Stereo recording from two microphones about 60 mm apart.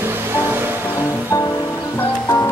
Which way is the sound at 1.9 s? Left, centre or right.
Left.